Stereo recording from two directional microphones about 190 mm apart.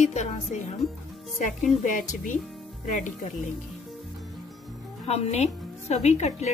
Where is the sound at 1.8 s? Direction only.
40° left (ahead or behind).